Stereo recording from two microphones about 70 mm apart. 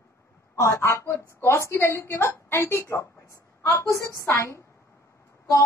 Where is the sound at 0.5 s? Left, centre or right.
Left.